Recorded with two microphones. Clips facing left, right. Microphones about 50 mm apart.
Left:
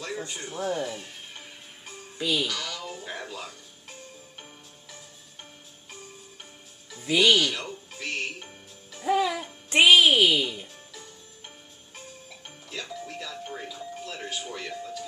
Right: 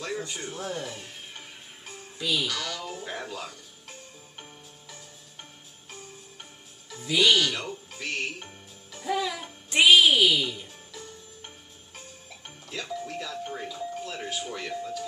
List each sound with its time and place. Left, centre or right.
0.3 s speech: centre
2.1 s speech: centre
2.4 s speech: centre
7.2 s music: centre
9.0 s music: centre
9.7 s music: left
10.0 s a woman's voice: left
10.4 s speech: centre
10.9 s music: centre
13.0 s doorbell: centre